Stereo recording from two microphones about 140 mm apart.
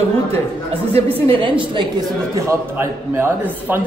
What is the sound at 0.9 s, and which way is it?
Speech, 40° right (ahead or behind).